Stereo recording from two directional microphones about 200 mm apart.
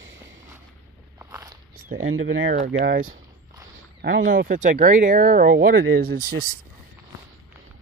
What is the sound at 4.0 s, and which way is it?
Speech, 50° right (ahead or behind).